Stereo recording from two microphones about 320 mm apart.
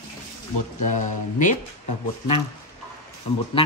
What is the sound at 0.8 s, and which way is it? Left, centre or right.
Speech, left.